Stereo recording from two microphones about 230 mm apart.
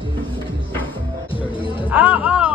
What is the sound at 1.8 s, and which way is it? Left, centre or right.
Music, centre.